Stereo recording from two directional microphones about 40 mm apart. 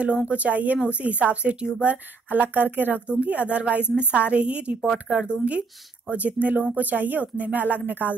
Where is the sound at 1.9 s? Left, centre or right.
Right.